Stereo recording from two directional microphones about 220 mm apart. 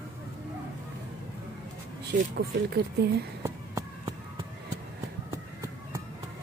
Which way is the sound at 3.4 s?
10° right (ahead or behind).